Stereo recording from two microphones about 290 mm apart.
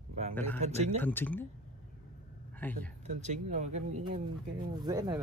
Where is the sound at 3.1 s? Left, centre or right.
Right.